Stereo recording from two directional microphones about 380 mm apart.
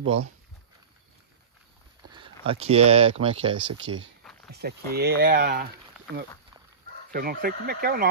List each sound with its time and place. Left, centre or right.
0.0 s speech: right
2.0 s a sound: centre
2.4 s speech: centre
3.9 s speech: right
4.2 s a sound: centre
4.5 s speech: right